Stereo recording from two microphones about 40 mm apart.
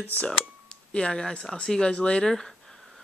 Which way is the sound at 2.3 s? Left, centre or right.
Centre.